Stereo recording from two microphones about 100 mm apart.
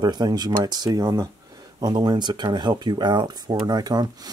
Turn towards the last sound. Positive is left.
turn(degrees=-40)  # may be behind; listen again after turning